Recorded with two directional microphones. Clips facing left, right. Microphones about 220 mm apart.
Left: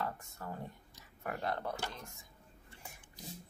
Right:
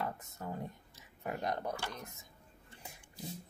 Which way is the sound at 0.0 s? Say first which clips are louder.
Right 1 dB; 20° right (ahead or behind).